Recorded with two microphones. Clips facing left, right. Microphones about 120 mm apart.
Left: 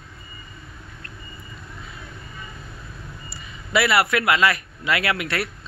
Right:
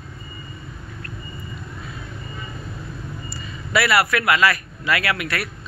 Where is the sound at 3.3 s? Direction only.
20° left (ahead or behind).